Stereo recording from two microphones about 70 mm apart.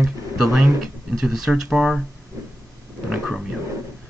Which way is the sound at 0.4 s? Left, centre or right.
Centre.